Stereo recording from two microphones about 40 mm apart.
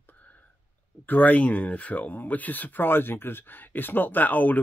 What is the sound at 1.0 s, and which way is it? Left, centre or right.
Speech, left.